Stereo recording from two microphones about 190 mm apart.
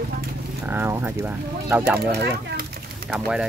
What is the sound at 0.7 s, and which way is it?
Speech, 10° right (ahead or behind).